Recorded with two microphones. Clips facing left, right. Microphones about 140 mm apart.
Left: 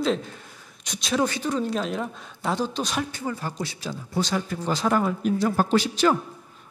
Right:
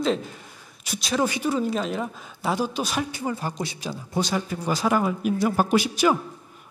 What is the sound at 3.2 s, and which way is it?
A man's voice, 15° right (ahead or behind).